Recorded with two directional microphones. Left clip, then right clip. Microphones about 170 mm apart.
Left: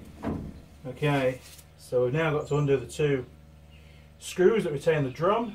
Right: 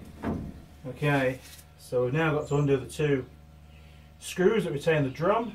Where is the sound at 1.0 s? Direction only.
10° left (ahead or behind).